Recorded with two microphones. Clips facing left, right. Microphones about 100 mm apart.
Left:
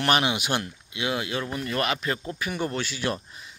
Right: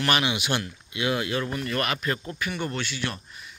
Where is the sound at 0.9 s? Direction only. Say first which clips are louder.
Right 2 dB; 20° left (ahead or behind).